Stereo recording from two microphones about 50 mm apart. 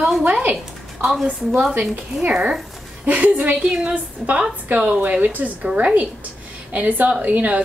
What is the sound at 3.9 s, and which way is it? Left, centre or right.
A woman's voice, right.